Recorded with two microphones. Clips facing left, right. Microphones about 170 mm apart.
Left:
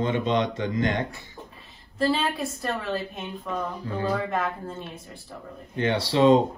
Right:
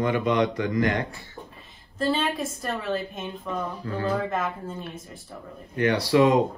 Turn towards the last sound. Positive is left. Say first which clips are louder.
# even
turn(degrees=30)  # may be behind; listen again after turning